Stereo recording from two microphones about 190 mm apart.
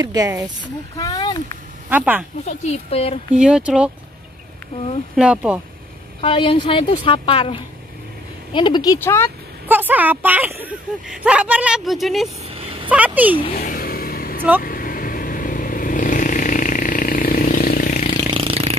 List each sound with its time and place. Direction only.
0.0 s speech: 20° right (ahead or behind)
0.9 s a woman's voice: 20° left (ahead or behind)
1.9 s a woman's voice: 10° right (ahead or behind)
2.4 s speech: 35° left (ahead or behind)
3.3 s speech: 5° right (ahead or behind)
5.1 s speech: 5° right (ahead or behind)
6.2 s a woman's voice: 30° left (ahead or behind); by 9.3 s 15° left (ahead or behind)
9.7 s a woman's voice: 10° right (ahead or behind)
12.4 s vehicle: 30° right (ahead or behind)
12.9 s a woman's voice: 10° right (ahead or behind)
13.6 s vehicle: 45° left (ahead or behind)
18.3 s a sound: 30° right (ahead or behind)